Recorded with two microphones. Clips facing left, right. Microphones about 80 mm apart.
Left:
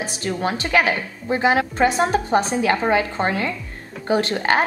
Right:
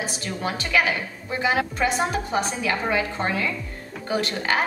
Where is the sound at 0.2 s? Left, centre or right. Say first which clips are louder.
Left 5 dB; left.